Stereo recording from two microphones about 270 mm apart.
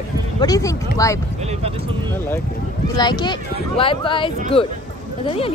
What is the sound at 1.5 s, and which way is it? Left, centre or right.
Speech, right.